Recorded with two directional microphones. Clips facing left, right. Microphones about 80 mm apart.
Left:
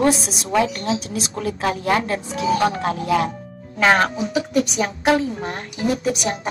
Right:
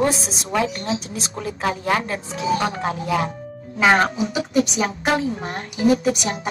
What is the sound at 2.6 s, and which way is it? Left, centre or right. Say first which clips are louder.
Speech: left 3 dB; centre.